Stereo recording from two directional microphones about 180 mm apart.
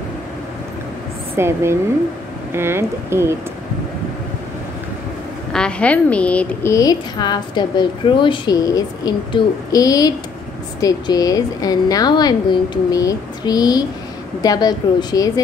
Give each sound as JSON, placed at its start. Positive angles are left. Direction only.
{"t": 1.3, "sound": "speech", "side_deg": -15}
{"t": 5.5, "sound": "a woman's voice", "side_deg": 5}